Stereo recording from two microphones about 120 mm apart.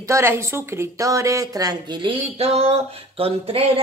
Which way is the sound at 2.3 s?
55° right (ahead or behind).